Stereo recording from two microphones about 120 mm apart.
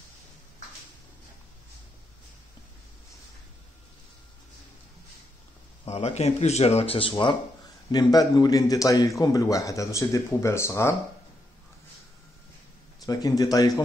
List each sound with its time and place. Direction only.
5.9 s speech: 60° left (ahead or behind); by 7.3 s 45° left (ahead or behind)
7.9 s a man's voice: 35° left (ahead or behind)
13.0 s a man's voice: 30° left (ahead or behind)